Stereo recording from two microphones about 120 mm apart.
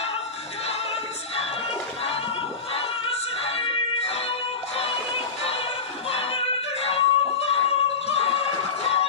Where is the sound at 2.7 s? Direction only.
55° left (ahead or behind).